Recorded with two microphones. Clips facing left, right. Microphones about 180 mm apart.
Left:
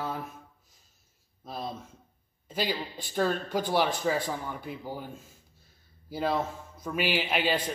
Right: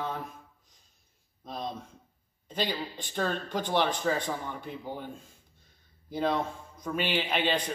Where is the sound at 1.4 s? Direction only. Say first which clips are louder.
Even; 5° left (ahead or behind).